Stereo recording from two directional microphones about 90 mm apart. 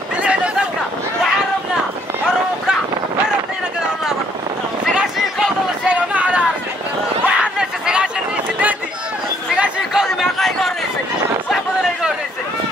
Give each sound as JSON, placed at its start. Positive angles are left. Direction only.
{"t": 0.2, "sound": "a sound", "side_deg": -15}
{"t": 2.2, "sound": "run", "side_deg": -5}
{"t": 4.8, "sound": "a sound", "side_deg": -5}
{"t": 6.1, "sound": "run", "side_deg": -15}
{"t": 7.2, "sound": "chatter", "side_deg": -10}
{"t": 9.6, "sound": "chatter", "side_deg": -10}